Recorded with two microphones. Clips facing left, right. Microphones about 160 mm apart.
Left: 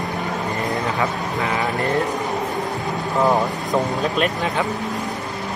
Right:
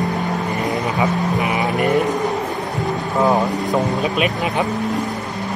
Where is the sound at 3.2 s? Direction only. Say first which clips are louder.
Right 2 dB; 5° right (ahead or behind).